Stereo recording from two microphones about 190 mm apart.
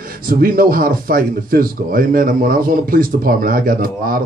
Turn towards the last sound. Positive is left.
turn(degrees=-50)  # may be behind; listen again after turning